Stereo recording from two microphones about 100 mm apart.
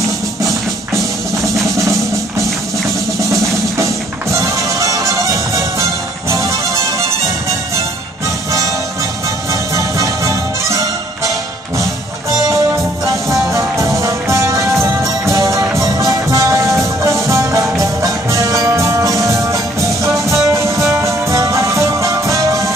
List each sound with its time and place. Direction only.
0.4 s music: 30° right (ahead or behind)
9.5 s music: 30° right (ahead or behind)
12.4 s music: 30° right (ahead or behind)